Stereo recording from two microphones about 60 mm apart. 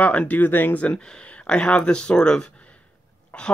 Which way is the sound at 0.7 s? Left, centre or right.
Left.